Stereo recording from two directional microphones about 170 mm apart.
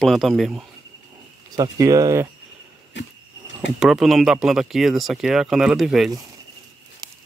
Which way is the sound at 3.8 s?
Centre (ahead or behind).